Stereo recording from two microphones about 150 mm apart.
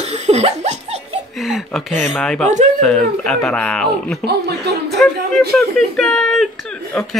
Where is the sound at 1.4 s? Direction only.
Centre (ahead or behind).